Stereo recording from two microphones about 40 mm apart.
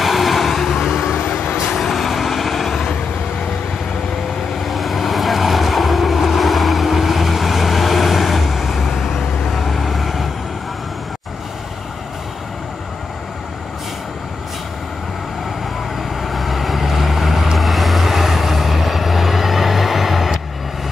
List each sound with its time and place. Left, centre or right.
0.0 s vehicle: centre
1.2 s vehicle: left
1.8 s vehicle: centre
4.6 s vehicle: centre
16.2 s vehicle: centre